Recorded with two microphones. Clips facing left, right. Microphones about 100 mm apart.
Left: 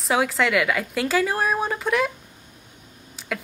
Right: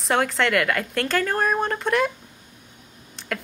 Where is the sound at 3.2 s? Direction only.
5° left (ahead or behind).